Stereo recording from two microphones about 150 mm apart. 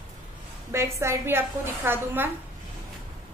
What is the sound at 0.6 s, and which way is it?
A woman's voice, 20° right (ahead or behind).